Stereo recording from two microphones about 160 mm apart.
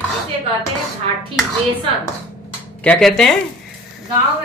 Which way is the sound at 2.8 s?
5° left (ahead or behind).